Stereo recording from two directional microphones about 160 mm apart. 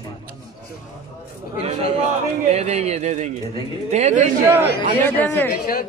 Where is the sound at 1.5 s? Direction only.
40° right (ahead or behind).